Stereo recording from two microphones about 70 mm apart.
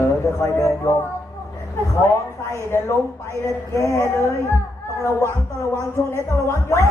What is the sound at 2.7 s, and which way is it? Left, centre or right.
Speech, left.